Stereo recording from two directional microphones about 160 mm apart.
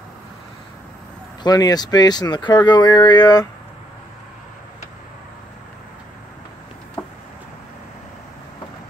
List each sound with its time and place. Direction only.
1.4 s speech: 25° left (ahead or behind)